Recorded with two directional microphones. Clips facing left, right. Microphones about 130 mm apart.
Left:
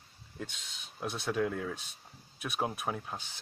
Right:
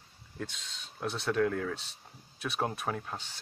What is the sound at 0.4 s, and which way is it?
Speech, 10° left (ahead or behind).